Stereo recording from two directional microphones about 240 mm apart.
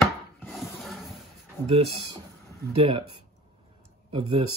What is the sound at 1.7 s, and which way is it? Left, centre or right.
Speech, right.